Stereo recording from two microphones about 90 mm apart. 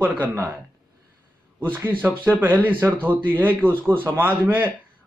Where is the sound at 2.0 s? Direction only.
20° right (ahead or behind).